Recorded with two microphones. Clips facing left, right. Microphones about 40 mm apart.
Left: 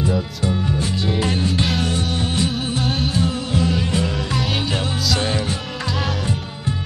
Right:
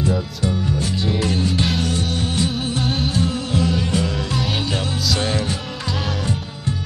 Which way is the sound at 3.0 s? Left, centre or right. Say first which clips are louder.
Even; centre.